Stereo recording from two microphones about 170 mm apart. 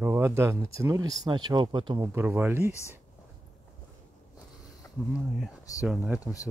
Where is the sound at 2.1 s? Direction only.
10° right (ahead or behind).